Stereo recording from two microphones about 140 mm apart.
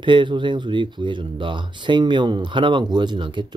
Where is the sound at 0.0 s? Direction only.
35° right (ahead or behind).